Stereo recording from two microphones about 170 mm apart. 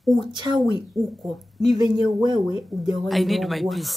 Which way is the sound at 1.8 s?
25° right (ahead or behind).